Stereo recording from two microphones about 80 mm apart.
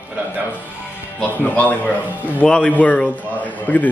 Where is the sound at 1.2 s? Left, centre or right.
Centre.